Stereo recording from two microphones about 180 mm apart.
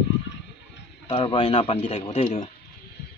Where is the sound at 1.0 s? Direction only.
25° left (ahead or behind).